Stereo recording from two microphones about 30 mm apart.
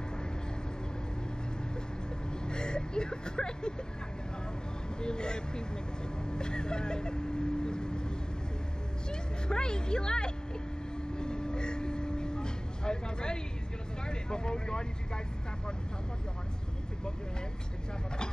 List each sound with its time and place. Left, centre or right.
2.4 s vehicle: left
5.0 s speech: left
6.2 s vehicle: left
9.1 s speech: left
11.1 s vehicle: left
14.0 s speech: left